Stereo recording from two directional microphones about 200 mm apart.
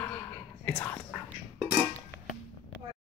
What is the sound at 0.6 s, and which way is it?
Whispering, 10° left (ahead or behind).